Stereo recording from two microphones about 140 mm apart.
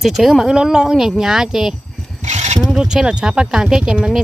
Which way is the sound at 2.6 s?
5° right (ahead or behind).